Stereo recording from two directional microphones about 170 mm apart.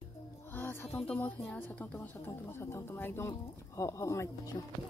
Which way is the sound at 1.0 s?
10° left (ahead or behind).